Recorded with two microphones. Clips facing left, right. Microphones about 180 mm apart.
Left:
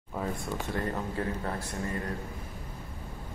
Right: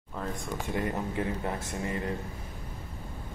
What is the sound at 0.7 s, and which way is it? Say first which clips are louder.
Speech: right 3 dB; 15° right (ahead or behind).